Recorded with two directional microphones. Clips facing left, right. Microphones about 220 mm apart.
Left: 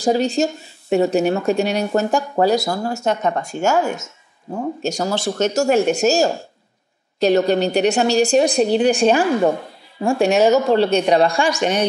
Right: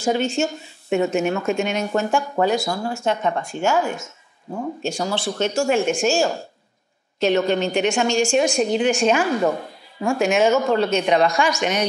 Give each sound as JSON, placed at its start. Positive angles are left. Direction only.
{"t": 0.0, "sound": "speech", "side_deg": 35}